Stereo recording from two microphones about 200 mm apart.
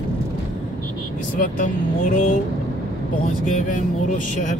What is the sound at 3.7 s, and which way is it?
Speech, 35° left (ahead or behind).